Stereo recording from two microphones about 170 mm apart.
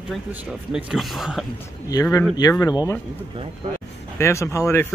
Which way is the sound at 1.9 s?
20° left (ahead or behind).